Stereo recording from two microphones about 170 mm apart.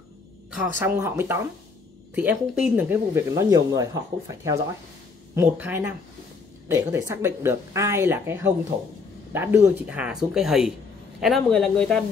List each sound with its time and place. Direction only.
0.6 s speech: 15° right (ahead or behind); by 12.0 s 5° left (ahead or behind)